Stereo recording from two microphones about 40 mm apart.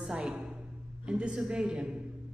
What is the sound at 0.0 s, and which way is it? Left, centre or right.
Speech, centre.